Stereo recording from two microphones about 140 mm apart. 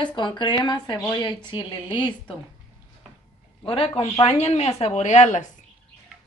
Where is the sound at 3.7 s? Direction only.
45° left (ahead or behind).